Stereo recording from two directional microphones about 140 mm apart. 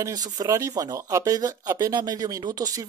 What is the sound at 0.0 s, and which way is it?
Speech, 25° right (ahead or behind).